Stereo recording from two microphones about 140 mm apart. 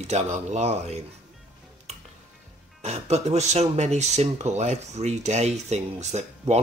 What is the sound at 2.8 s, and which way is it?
Speech, 50° right (ahead or behind).